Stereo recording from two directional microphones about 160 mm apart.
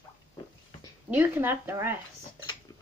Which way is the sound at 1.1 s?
15° right (ahead or behind).